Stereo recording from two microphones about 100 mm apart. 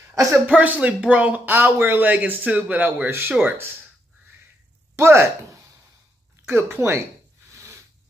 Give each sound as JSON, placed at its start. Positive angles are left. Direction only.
{"t": 0.3, "sound": "speech", "side_deg": -15}
{"t": 4.9, "sound": "speech", "side_deg": -25}
{"t": 6.4, "sound": "speech", "side_deg": -20}